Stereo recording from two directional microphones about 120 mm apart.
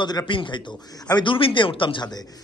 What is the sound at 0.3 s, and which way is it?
A man's voice, 45° left (ahead or behind).